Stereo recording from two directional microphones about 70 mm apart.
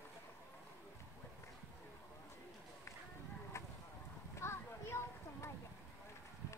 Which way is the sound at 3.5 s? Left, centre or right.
Left.